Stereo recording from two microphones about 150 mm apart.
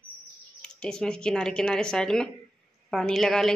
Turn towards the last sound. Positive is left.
turn(degrees=5)  # may be behind; listen again after turning